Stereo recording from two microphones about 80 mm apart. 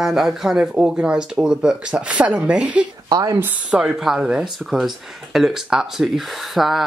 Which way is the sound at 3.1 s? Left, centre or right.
Right.